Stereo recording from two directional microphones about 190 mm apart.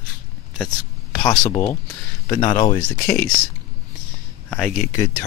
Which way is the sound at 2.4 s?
40° left (ahead or behind).